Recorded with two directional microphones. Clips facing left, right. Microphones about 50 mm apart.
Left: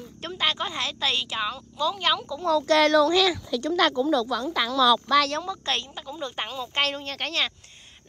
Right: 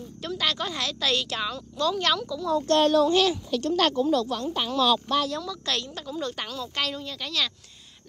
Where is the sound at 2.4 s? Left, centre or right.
Left.